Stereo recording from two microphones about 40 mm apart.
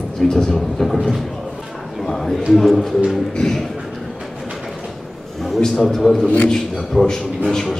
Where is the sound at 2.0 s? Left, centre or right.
Centre.